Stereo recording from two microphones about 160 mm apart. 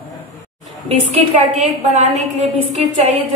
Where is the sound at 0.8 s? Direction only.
40° right (ahead or behind).